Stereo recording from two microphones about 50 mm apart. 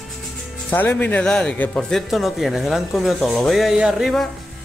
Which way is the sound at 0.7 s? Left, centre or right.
Left.